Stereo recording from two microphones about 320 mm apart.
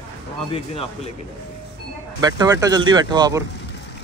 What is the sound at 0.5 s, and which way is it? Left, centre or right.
Speech, centre.